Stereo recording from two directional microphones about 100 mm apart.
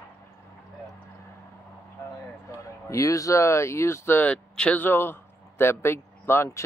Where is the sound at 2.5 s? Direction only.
35° left (ahead or behind).